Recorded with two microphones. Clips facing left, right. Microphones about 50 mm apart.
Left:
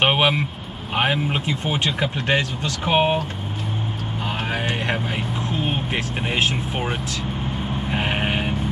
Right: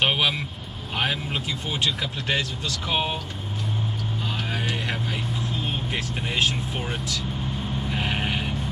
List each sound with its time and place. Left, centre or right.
0.0 s vehicle: left
0.9 s speech: left
4.5 s speech: left